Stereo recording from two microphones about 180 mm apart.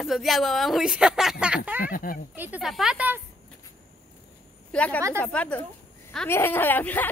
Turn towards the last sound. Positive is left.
turn(degrees=10)  # may be behind; listen again after turning